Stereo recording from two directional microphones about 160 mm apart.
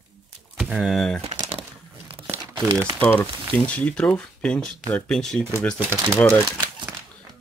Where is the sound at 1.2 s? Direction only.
35° right (ahead or behind).